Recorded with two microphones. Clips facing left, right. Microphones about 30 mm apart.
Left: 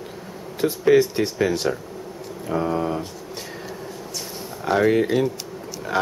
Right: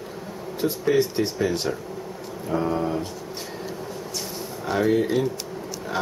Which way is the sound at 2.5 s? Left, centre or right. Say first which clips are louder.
Left 1 dB; centre.